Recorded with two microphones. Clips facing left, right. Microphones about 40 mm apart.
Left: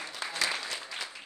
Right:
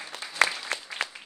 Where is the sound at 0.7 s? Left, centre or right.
Right.